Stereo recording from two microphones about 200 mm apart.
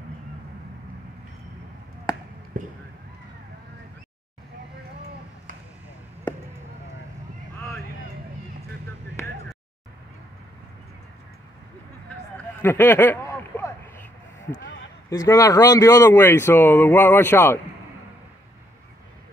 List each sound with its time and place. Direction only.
2.5 s speech: 45° right (ahead or behind)
12.6 s a sound: 10° left (ahead or behind)
15.0 s speech: 15° left (ahead or behind)